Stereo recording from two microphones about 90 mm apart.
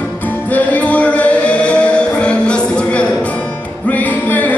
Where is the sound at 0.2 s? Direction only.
20° left (ahead or behind).